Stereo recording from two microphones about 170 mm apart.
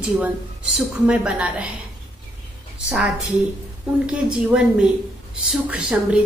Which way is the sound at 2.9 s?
5° right (ahead or behind).